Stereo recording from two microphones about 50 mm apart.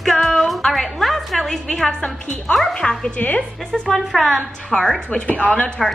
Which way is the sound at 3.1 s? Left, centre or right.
Left.